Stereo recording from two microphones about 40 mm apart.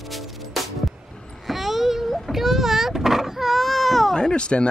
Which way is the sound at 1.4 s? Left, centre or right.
Centre.